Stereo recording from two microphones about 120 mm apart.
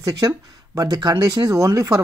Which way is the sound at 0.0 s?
30° right (ahead or behind).